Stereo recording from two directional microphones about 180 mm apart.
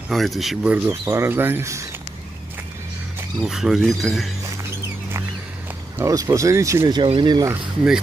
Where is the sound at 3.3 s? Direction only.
Centre (ahead or behind).